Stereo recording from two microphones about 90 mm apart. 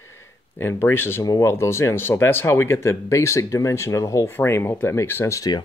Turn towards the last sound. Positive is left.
turn(degrees=30)  # may be behind; listen again after turning